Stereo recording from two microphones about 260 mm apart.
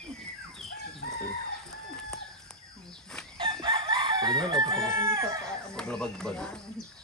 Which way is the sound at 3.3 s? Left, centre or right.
Centre.